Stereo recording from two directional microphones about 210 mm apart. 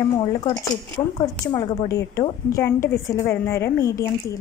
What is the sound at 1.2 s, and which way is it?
A woman's voice, 20° left (ahead or behind).